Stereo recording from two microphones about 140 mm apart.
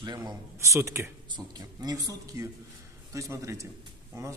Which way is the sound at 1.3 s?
30° right (ahead or behind).